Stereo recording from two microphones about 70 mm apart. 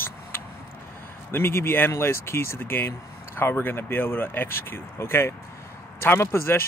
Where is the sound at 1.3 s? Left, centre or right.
Left.